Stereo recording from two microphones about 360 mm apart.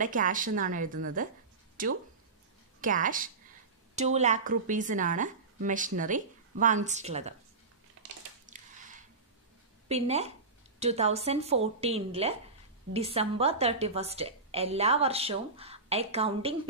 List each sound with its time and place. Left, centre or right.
0.0 s speech: right
8.5 s squish: right
9.8 s a woman's voice: centre